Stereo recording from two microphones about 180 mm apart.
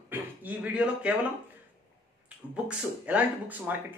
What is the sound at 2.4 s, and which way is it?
Speech, 5° right (ahead or behind).